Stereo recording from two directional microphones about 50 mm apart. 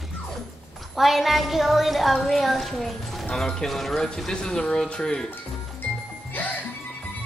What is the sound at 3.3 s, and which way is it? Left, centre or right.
Speech, centre.